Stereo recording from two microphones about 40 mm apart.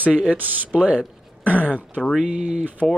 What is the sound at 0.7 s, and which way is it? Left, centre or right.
Speech, right.